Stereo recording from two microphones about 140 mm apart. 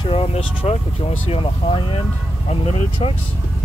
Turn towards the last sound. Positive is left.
turn(degrees=45)  # may be behind; listen again after turning